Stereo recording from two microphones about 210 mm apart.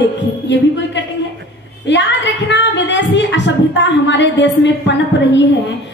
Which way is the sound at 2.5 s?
55° left (ahead or behind).